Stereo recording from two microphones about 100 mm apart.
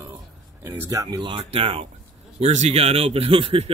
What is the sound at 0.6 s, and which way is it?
Speech, 35° right (ahead or behind).